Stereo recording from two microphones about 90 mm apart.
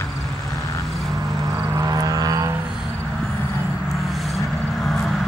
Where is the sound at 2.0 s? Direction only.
45° right (ahead or behind).